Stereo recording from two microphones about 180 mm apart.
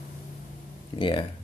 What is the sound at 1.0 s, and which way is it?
Speech, 30° left (ahead or behind).